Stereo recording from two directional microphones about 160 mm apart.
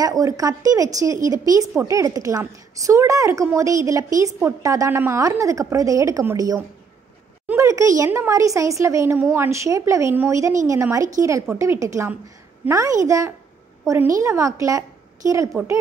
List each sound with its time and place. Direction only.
0.0 s a woman's voice: 20° right (ahead or behind)